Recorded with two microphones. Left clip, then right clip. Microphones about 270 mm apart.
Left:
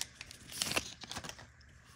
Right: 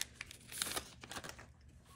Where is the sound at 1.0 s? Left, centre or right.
Left.